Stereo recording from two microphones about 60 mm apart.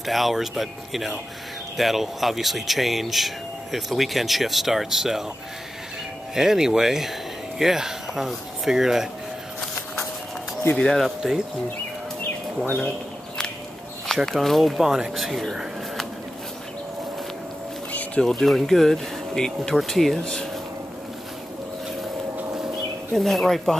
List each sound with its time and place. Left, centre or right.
0.0 s speech: centre
6.3 s speech: centre
10.7 s speech: centre
11.0 s speech: centre
14.0 s speech: centre
18.2 s speech: centre
23.1 s speech: centre